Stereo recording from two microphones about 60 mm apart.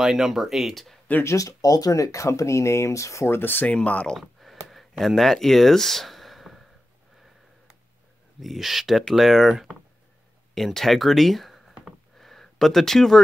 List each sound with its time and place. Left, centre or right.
0.0 s speech: centre
1.2 s speech: left
3.3 s speech: left
3.7 s speech: left
4.2 s a sound: centre
8.4 s speech: centre
10.5 s a sound: centre